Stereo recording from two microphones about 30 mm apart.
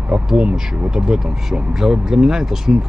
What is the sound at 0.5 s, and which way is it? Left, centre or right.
Speech, centre.